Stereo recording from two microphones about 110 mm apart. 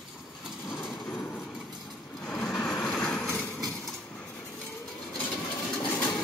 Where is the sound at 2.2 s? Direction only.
10° left (ahead or behind).